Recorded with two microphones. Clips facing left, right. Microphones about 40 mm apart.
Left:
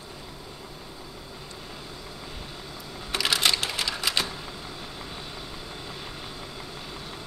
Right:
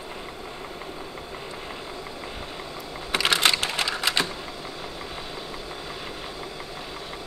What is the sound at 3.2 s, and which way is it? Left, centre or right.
Sewing machine, right.